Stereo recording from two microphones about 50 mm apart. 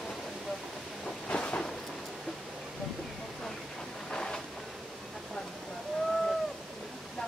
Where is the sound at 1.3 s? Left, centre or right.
Left.